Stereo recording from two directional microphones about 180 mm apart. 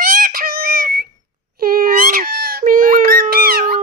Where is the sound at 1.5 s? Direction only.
55° right (ahead or behind).